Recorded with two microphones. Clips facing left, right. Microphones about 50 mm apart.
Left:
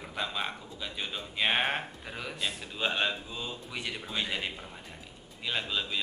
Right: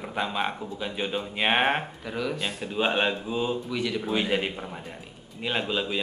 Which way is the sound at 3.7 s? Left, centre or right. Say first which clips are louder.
Right 8 dB; centre.